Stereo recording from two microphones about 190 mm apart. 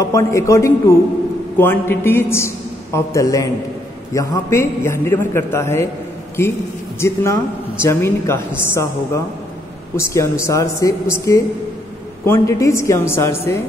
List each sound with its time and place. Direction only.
0.0 s a man's voice: 15° left (ahead or behind)
7.8 s a man's voice: 15° left (ahead or behind)